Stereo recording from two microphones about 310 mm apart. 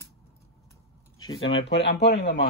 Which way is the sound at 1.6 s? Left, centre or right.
Left.